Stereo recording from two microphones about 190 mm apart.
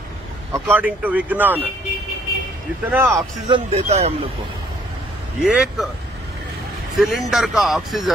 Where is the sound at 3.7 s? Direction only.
35° right (ahead or behind).